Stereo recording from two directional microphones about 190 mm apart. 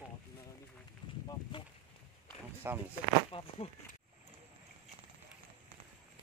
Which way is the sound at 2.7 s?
10° right (ahead or behind).